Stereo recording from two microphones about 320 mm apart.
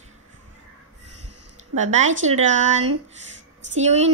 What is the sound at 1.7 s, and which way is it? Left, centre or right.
Speech, right.